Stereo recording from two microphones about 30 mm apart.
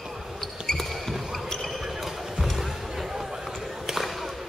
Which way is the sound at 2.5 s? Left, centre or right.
Centre.